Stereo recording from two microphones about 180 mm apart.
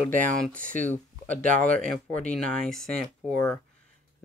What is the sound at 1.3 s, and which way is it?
Speech, 45° right (ahead or behind).